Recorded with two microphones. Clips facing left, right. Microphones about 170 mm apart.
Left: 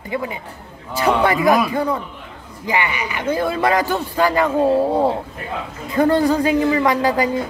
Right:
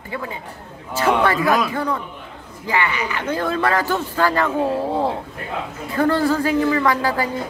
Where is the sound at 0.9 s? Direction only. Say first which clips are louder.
Left 1 dB; 15° left (ahead or behind).